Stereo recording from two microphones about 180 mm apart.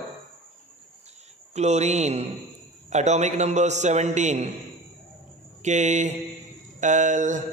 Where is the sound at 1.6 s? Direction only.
40° right (ahead or behind).